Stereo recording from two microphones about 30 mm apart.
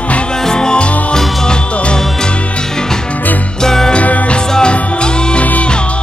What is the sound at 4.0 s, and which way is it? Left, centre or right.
Music, left.